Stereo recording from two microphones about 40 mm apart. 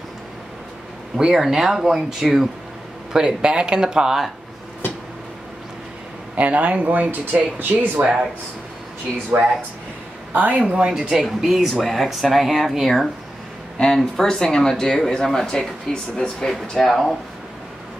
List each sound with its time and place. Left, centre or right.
1.1 s speech: centre
6.3 s speech: right
9.3 s speech: right
10.3 s a man's voice: right
10.6 s speech: right
11.2 s speech: centre
13.7 s speech: centre
16.8 s speech: centre